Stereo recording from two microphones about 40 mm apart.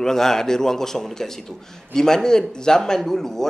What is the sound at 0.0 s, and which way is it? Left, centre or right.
Speech, centre.